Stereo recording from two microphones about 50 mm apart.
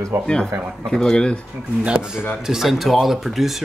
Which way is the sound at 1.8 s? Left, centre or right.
Centre.